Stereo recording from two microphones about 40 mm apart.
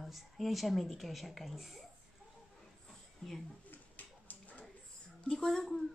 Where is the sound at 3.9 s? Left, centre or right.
Left.